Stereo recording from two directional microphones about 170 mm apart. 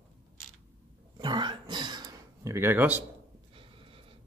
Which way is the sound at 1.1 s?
25° right (ahead or behind).